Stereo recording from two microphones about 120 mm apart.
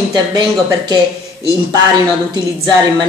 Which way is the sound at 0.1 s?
35° right (ahead or behind).